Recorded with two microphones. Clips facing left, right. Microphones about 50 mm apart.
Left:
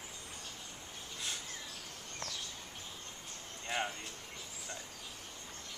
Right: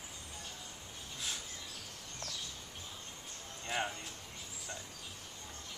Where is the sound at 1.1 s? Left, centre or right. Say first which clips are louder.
Even; centre.